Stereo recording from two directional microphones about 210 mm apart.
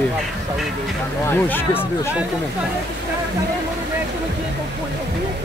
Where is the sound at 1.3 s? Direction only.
10° left (ahead or behind).